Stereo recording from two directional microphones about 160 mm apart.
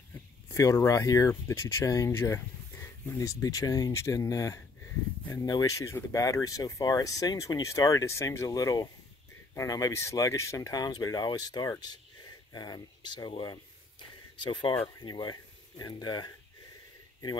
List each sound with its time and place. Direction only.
0.5 s speech: 20° left (ahead or behind)